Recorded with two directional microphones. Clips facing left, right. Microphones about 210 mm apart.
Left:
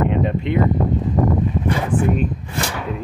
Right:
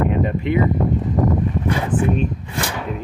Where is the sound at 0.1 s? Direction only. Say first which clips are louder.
Even; centre (ahead or behind).